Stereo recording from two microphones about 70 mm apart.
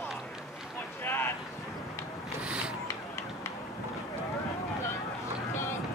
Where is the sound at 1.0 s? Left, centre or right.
Left.